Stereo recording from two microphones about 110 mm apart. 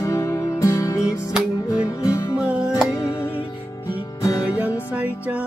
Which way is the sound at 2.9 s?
30° left (ahead or behind).